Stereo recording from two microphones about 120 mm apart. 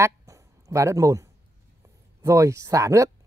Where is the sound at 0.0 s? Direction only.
25° right (ahead or behind).